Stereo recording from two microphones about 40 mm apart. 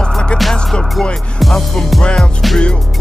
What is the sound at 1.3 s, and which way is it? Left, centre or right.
Music, centre.